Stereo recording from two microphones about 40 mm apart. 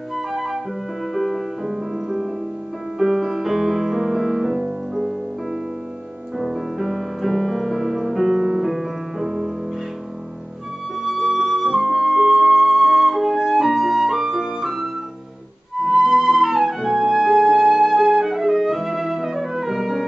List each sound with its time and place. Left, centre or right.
0.1 s flute: centre
1.1 s music: centre
6.3 s music: centre
8.4 s music: centre
8.6 s music: centre
11.0 s flute: centre